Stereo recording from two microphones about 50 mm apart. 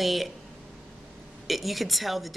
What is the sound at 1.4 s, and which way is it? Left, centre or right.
Speech, centre.